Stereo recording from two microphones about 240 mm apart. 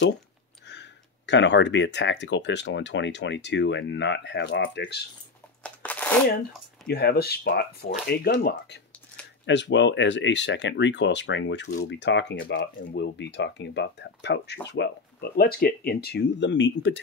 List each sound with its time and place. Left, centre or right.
0.7 s speech: left
5.6 s a sound: centre
6.9 s speech: left